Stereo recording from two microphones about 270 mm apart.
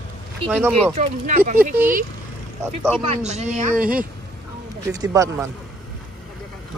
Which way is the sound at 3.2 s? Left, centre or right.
Right.